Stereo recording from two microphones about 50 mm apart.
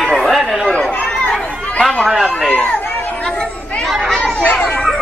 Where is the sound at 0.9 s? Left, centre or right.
Left.